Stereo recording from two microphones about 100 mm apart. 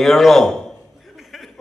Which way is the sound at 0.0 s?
Centre (ahead or behind).